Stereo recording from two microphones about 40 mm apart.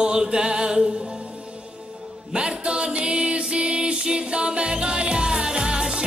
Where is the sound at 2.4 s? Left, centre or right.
Right.